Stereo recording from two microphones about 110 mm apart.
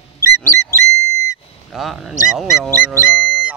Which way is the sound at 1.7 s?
Centre (ahead or behind).